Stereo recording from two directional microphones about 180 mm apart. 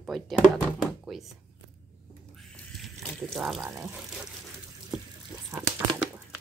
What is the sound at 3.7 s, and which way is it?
Speech, 15° right (ahead or behind).